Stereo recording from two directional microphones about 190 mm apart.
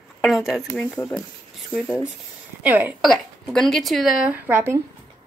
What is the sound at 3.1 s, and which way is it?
A woman's voice, centre (ahead or behind).